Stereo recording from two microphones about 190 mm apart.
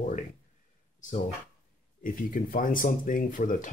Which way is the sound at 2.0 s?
45° left (ahead or behind).